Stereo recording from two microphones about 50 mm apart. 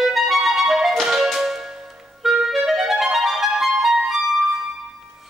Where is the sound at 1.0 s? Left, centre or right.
Centre.